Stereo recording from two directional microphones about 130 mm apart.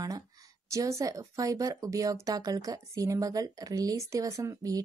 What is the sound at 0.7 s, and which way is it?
A woman's voice, 25° right (ahead or behind).